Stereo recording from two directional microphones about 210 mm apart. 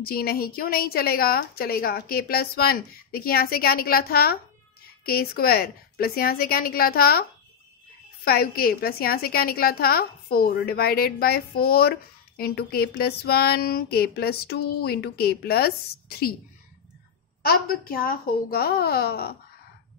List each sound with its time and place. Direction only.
0.0 s a woman's voice: 45° left (ahead or behind)
17.5 s a woman's voice: 45° left (ahead or behind)